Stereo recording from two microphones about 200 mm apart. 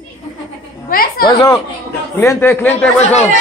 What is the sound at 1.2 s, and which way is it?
A man's voice, 20° left (ahead or behind).